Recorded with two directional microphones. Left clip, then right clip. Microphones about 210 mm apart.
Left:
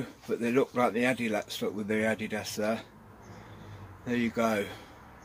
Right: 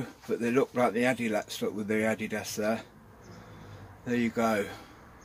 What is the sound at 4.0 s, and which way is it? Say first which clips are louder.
Speech: even; 5° right (ahead or behind).